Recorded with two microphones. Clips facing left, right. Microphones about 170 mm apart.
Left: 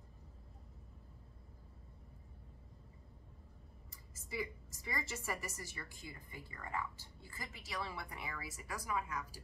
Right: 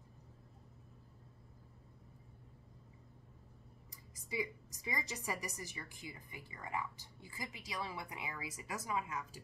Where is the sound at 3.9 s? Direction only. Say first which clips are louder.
Right 2 dB; 15° right (ahead or behind).